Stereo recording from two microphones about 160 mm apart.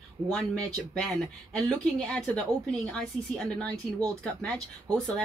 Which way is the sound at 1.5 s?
5° left (ahead or behind).